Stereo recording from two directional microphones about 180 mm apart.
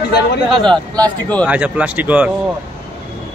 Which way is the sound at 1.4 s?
5° right (ahead or behind).